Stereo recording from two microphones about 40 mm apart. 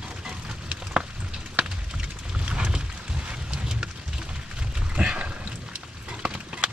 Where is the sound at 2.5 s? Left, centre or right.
Centre.